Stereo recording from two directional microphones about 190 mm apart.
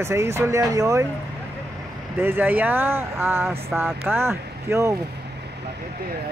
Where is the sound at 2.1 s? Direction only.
10° right (ahead or behind).